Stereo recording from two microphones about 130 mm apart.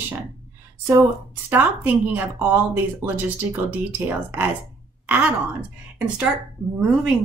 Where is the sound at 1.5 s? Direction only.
15° right (ahead or behind).